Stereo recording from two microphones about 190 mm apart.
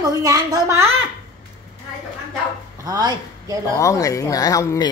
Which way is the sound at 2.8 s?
20° right (ahead or behind).